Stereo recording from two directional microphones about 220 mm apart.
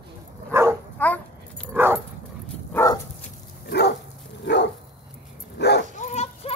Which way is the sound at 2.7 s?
15° left (ahead or behind).